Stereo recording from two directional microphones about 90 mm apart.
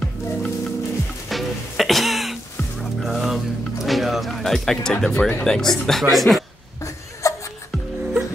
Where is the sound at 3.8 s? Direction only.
Centre (ahead or behind).